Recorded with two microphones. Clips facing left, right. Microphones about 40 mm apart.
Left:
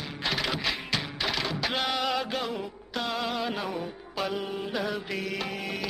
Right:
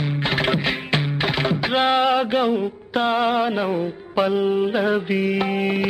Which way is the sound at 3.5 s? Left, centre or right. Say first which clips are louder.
Right 10 dB; right.